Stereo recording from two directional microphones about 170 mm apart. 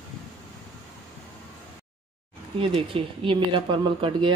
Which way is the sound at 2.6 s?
30° right (ahead or behind).